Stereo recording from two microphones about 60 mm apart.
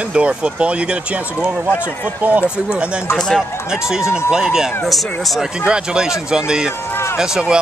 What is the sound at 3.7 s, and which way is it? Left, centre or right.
Speech, centre.